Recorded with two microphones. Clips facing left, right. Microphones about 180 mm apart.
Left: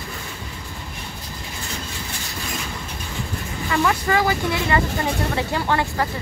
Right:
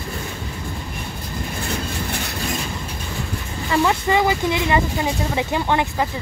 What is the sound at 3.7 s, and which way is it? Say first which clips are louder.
Speech: right 2 dB; 25° right (ahead or behind).